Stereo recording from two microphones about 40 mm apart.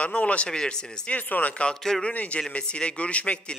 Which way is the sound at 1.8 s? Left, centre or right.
Centre.